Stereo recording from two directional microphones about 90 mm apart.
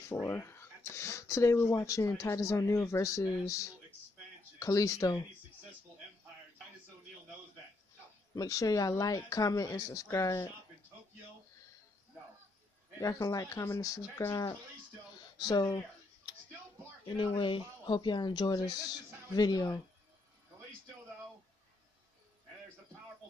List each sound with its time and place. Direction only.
0.3 s speech: 30° left (ahead or behind)
8.4 s speech: 40° left (ahead or behind)
13.0 s speech: 40° left (ahead or behind)
16.3 s a sound: 50° left (ahead or behind)
17.2 s speech: 70° left (ahead or behind); by 19.8 s 45° left (ahead or behind)